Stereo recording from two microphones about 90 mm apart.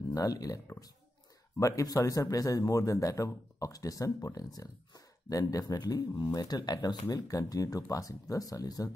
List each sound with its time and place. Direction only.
0.1 s speech: 40° left (ahead or behind)
1.6 s speech: 40° left (ahead or behind)